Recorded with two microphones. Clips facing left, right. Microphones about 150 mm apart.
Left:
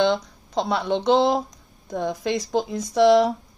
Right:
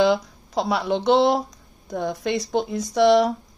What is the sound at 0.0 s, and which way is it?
Speech, centre (ahead or behind).